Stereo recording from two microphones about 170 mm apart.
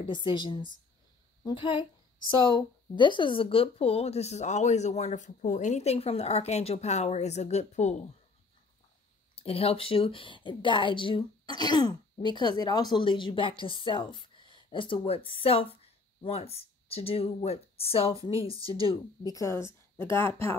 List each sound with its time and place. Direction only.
0.0 s a woman's voice: 25° left (ahead or behind); by 8.0 s 40° left (ahead or behind)
9.3 s a woman's voice: 35° left (ahead or behind); by 20.3 s 15° left (ahead or behind)